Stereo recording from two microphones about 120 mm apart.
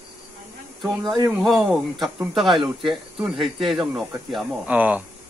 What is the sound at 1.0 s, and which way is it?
Speech, 35° right (ahead or behind).